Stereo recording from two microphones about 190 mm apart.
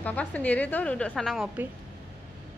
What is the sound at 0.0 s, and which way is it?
A woman's voice, 10° left (ahead or behind).